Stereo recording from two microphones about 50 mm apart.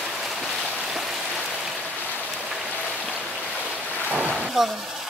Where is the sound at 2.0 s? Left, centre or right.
Left.